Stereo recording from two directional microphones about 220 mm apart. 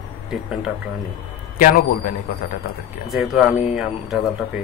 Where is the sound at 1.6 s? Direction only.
40° left (ahead or behind).